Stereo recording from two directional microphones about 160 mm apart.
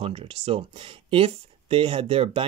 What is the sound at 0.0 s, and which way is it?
Speech, 35° right (ahead or behind).